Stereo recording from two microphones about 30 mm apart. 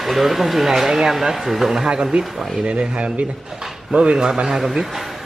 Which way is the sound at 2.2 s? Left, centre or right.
Right.